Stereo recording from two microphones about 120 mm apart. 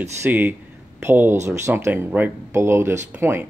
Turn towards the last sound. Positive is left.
turn(degrees=-20)  # may be behind; listen again after turning